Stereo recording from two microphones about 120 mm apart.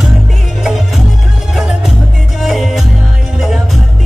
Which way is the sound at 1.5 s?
5° right (ahead or behind).